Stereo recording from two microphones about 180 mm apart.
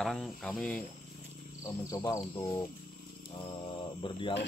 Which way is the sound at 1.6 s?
15° left (ahead or behind).